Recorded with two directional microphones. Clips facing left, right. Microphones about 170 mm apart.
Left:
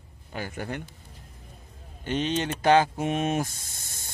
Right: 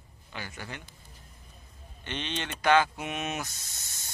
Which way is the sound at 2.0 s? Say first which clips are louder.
Left 9 dB; 40° left (ahead or behind).